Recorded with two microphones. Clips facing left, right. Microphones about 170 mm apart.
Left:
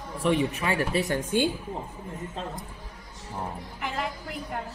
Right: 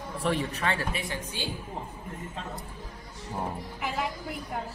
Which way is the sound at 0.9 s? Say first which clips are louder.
Left 9 dB; 45° left (ahead or behind).